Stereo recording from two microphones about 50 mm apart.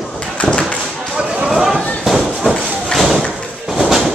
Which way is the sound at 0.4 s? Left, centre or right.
Left.